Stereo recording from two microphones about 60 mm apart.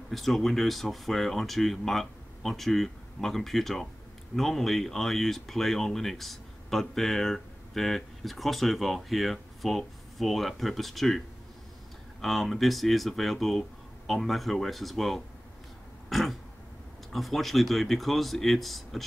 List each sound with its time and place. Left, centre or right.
0.1 s speech: centre
16.1 s throat clearing: centre
17.1 s speech: centre